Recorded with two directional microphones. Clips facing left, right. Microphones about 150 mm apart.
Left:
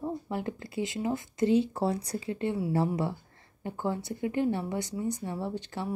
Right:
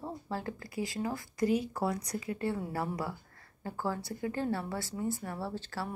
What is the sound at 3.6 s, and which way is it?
Speech, 20° left (ahead or behind).